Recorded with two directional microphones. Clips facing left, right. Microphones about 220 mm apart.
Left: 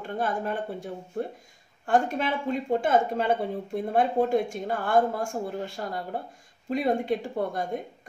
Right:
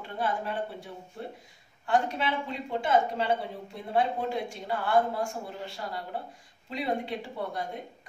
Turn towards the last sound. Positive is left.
turn(degrees=50)  # may be behind; listen again after turning